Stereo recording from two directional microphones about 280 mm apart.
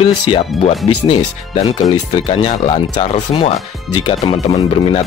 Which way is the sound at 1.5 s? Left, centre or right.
Centre.